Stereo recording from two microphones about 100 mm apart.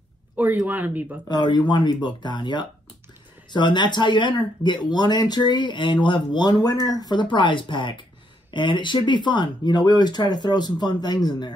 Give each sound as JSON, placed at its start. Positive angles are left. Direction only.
{"t": 0.7, "sound": "speech", "side_deg": -20}
{"t": 1.3, "sound": "speech", "side_deg": 45}